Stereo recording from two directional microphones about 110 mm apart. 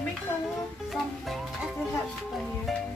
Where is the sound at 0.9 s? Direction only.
Centre (ahead or behind).